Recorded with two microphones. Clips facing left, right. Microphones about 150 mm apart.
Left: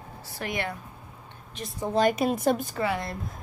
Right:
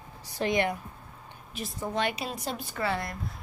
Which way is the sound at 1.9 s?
40° left (ahead or behind).